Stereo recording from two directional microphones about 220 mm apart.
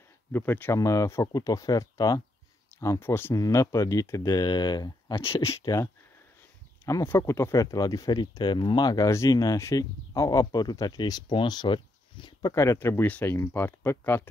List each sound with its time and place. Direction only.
0.3 s speech: 10° left (ahead or behind)